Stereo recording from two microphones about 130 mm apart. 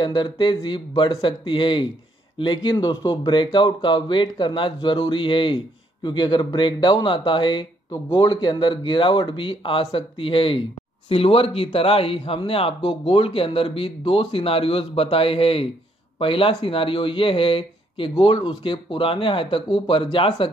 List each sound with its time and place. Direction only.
0.0 s speech: 35° left (ahead or behind)